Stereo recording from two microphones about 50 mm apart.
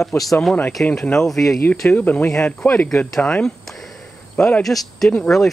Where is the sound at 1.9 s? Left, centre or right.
Left.